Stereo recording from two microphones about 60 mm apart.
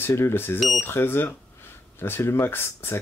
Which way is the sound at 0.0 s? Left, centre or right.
Left.